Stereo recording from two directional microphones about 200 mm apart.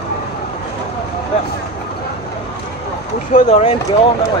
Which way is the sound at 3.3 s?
35° left (ahead or behind).